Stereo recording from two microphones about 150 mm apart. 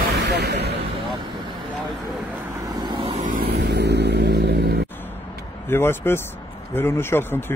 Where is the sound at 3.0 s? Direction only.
40° right (ahead or behind).